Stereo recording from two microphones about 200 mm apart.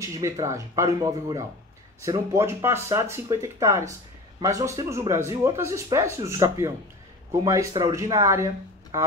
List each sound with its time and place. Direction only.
0.0 s speech: 15° right (ahead or behind)